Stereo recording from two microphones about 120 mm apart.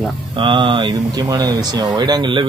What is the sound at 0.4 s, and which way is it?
Speech, 45° right (ahead or behind).